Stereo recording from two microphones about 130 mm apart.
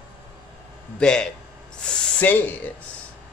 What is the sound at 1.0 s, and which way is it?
Speech, 5° left (ahead or behind).